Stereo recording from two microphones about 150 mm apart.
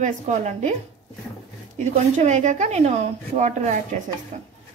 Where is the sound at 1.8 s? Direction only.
55° right (ahead or behind).